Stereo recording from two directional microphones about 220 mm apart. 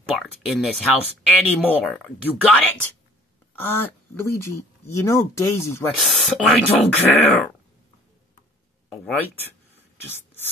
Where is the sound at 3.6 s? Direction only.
10° left (ahead or behind).